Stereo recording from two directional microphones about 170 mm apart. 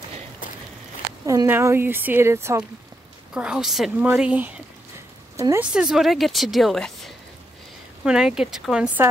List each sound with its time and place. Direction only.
1.2 s speech: 20° right (ahead or behind)
3.3 s speech: 5° right (ahead or behind)
5.7 s speech: 5° right (ahead or behind)